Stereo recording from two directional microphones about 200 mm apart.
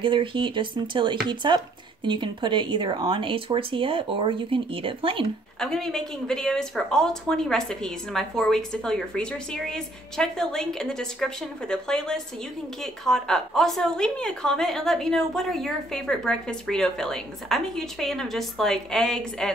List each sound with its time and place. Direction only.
0.0 s speech: 25° right (ahead or behind)
5.6 s a woman's voice: centre (ahead or behind)